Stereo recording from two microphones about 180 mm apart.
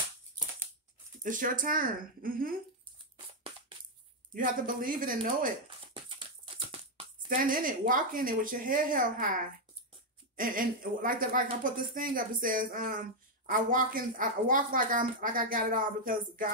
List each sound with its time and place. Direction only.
1.2 s speech: 45° right (ahead or behind)
4.3 s speech: 50° right (ahead or behind)
6.0 s a sound: 30° right (ahead or behind)
7.2 s speech: 50° right (ahead or behind)
10.3 s speech: 50° right (ahead or behind)